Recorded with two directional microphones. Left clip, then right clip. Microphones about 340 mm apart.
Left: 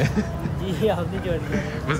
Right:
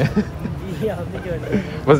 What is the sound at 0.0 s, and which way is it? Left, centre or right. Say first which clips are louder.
Speech: right 4 dB; centre.